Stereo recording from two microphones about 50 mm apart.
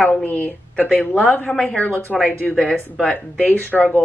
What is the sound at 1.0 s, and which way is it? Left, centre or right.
Speech, left.